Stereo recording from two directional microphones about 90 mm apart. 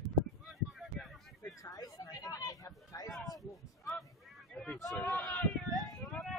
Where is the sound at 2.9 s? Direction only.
40° left (ahead or behind).